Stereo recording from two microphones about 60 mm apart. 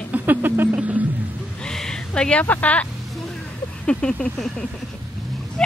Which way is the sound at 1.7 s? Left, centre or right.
Centre.